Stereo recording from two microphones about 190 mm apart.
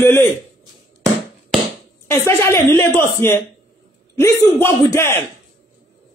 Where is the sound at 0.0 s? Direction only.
10° left (ahead or behind).